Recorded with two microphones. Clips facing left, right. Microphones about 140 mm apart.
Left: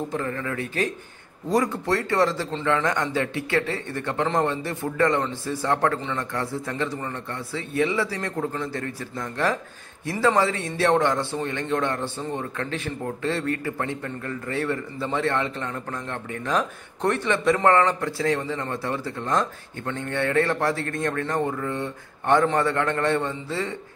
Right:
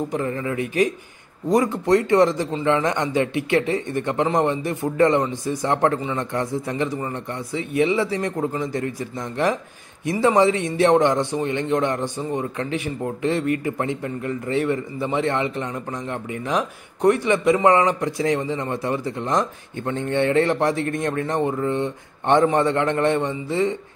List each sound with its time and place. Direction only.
0.1 s a man's voice: 15° right (ahead or behind)